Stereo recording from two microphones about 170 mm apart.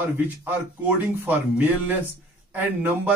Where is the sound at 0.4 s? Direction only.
10° right (ahead or behind).